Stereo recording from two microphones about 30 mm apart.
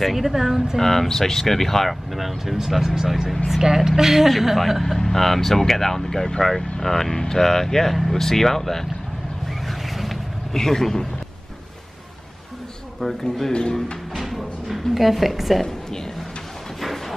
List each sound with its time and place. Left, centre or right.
0.0 s speech: centre
0.7 s speech: centre
2.1 s a woman's voice: centre
4.9 s speech: centre
9.5 s vehicle: centre
10.5 s speech: centre
13.0 s speech: centre
13.5 s speech: left
14.1 s speech: centre
15.6 s a woman's voice: centre